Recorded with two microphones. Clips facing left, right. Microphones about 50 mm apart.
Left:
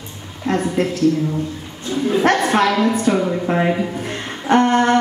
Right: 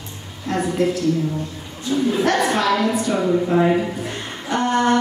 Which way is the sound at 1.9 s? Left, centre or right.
Centre.